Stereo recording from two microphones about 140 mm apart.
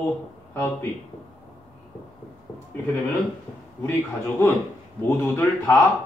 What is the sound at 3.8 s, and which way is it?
A man's voice, 15° left (ahead or behind).